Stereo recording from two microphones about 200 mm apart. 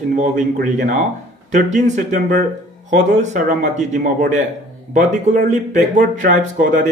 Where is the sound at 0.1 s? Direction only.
40° right (ahead or behind).